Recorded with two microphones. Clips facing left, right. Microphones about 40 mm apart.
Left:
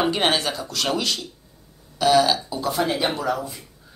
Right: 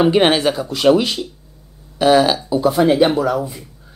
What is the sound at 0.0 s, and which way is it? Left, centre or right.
Speech, centre.